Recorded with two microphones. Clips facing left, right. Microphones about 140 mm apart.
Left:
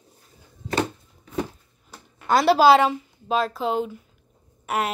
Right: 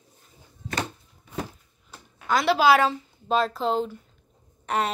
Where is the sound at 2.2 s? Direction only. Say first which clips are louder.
Left 4 dB; 35° left (ahead or behind).